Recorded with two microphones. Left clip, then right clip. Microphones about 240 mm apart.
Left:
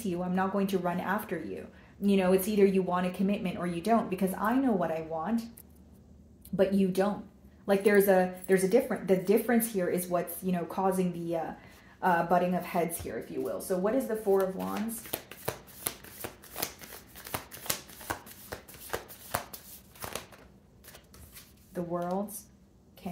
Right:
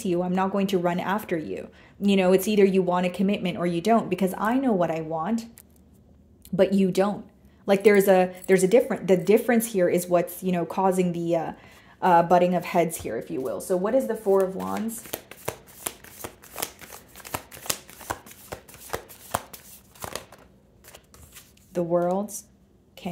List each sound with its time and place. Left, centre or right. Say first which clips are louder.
0.0 s speech: right 7 dB; right
6.5 s speech: right 6 dB; right
15.0 s shuffling cards: right 3 dB; right
21.7 s speech: right 10 dB; right